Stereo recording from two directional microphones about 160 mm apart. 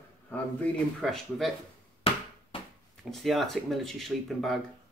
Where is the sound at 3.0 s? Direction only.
Centre (ahead or behind).